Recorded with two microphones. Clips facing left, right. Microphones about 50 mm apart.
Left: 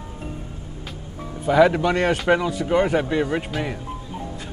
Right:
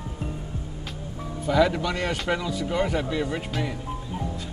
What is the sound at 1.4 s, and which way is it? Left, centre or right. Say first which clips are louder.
Speech: left 6 dB; left.